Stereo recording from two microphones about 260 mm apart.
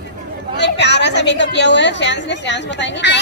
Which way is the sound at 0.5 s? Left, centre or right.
Left.